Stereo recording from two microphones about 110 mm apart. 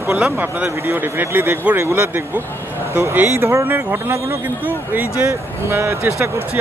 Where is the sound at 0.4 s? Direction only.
20° right (ahead or behind).